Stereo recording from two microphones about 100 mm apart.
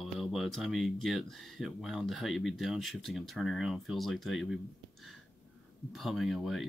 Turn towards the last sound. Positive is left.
turn(degrees=0)  # may be behind; listen again after turning